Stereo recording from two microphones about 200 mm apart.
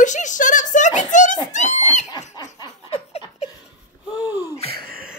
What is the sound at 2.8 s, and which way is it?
Laughter, 30° left (ahead or behind).